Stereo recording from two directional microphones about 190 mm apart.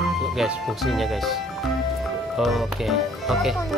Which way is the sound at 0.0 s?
Centre (ahead or behind).